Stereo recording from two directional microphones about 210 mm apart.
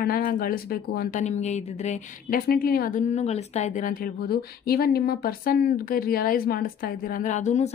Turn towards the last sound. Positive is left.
turn(degrees=35)  # may be behind; listen again after turning